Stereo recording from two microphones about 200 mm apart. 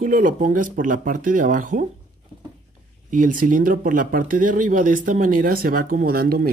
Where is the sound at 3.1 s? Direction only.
40° right (ahead or behind).